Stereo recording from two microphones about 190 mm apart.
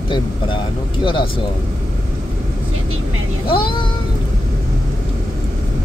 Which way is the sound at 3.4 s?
25° left (ahead or behind).